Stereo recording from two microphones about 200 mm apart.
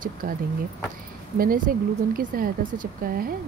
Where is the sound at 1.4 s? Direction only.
45° right (ahead or behind).